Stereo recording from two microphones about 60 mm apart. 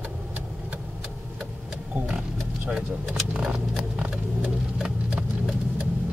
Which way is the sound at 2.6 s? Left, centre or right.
Centre.